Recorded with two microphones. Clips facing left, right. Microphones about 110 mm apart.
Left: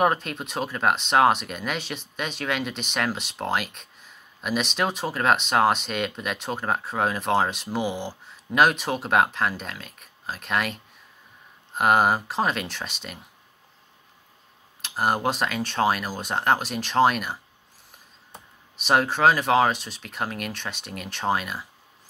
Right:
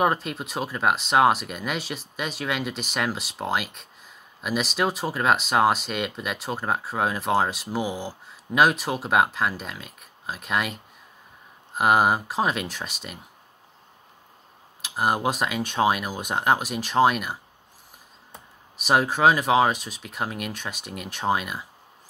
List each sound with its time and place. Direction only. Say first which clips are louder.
0.0 s speech: left 1 dB; centre (ahead or behind)
11.7 s speech: even; 5° right (ahead or behind)
14.8 s speech: even; 5° right (ahead or behind)
18.9 s speech: even; 5° right (ahead or behind)